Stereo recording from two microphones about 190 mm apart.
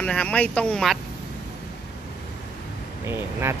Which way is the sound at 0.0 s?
5° left (ahead or behind).